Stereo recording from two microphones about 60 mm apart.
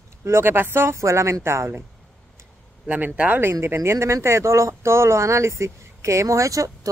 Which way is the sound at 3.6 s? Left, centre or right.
Right.